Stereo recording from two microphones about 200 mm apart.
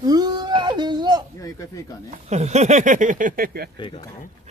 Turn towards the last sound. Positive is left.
turn(degrees=25)  # may be behind; listen again after turning